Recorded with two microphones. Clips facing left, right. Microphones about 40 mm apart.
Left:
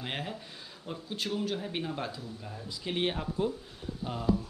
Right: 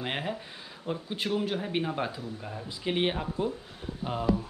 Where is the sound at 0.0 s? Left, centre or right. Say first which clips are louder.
Right 4 dB; centre.